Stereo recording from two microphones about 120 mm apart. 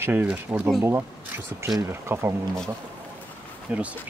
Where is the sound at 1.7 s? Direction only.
25° right (ahead or behind).